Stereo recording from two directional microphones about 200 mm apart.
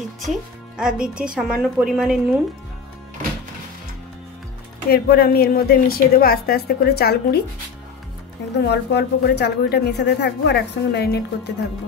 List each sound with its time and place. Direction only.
0.7 s a woman's voice: 5° right (ahead or behind)
4.8 s a woman's voice: 50° left (ahead or behind)
8.6 s a woman's voice: 55° left (ahead or behind)